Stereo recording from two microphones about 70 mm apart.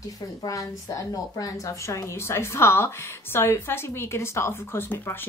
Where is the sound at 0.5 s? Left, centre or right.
Left.